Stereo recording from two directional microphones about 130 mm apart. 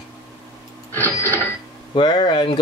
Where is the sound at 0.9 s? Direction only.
15° left (ahead or behind).